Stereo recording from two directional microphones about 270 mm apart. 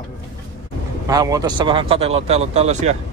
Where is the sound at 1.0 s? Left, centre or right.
Centre.